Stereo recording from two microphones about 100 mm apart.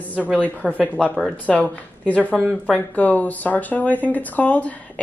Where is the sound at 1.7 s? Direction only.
15° left (ahead or behind).